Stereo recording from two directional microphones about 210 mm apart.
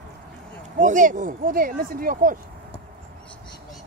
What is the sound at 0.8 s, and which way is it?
Speech, 35° right (ahead or behind).